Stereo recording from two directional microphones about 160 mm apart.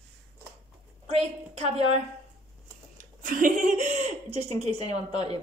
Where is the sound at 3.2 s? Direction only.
55° right (ahead or behind); by 5.4 s 40° right (ahead or behind).